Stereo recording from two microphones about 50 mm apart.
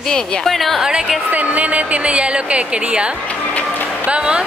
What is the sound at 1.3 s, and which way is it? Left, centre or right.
A woman's voice, right.